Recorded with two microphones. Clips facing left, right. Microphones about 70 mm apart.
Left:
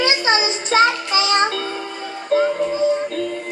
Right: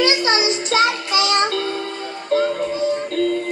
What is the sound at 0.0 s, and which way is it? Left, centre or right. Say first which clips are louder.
Music: right 1 dB; left.